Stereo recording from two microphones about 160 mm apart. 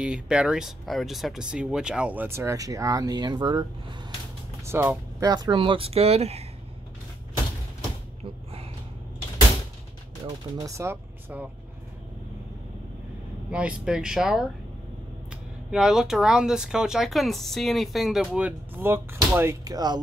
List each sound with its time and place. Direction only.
0.0 s speech: 5° right (ahead or behind); by 3.9 s 30° right (ahead or behind)
4.6 s speech: 15° right (ahead or behind); by 6.4 s 40° right (ahead or behind)
10.2 s speech: 20° right (ahead or behind)
13.5 s speech: 5° right (ahead or behind)
15.7 s speech: 5° right (ahead or behind); by 20.0 s 25° right (ahead or behind)